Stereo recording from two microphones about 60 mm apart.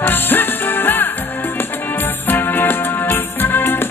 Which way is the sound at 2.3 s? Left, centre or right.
Left.